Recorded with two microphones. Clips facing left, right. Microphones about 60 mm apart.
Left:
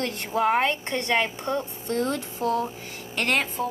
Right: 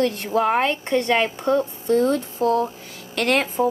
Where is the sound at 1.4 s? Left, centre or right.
Right.